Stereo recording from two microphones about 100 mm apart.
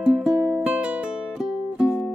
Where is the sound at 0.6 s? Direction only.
10° right (ahead or behind).